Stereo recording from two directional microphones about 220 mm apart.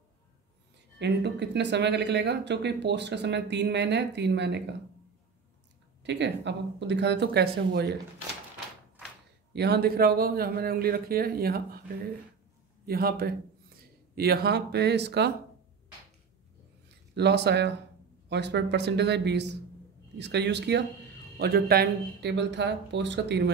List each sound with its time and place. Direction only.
0.9 s speech: 50° right (ahead or behind)
6.0 s speech: 50° right (ahead or behind)
9.5 s speech: 50° right (ahead or behind)
12.8 s speech: 45° right (ahead or behind)
17.1 s speech: 50° right (ahead or behind)